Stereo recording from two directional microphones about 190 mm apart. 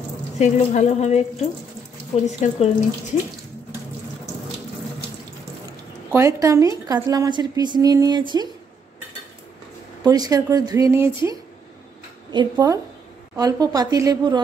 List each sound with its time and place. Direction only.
0.4 s a woman's voice: 35° left (ahead or behind)
2.2 s a woman's voice: 40° left (ahead or behind)
6.1 s a woman's voice: 15° right (ahead or behind)
10.0 s a woman's voice: 20° right (ahead or behind)